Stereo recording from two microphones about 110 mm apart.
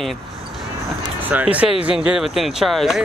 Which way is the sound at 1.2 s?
15° right (ahead or behind).